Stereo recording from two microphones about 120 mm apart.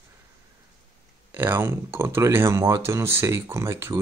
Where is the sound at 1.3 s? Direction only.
20° right (ahead or behind).